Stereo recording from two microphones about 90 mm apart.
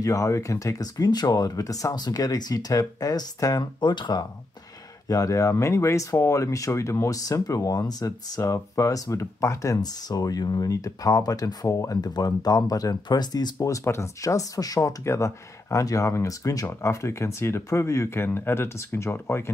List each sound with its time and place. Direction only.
0.0 s speech: 35° left (ahead or behind)
3.8 s speech: 60° left (ahead or behind)
5.0 s speech: 35° left (ahead or behind)
13.6 s speech: 30° left (ahead or behind)